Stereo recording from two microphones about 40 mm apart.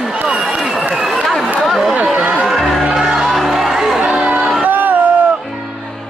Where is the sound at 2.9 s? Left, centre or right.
Centre.